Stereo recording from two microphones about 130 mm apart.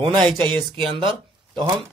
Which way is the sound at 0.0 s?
40° right (ahead or behind).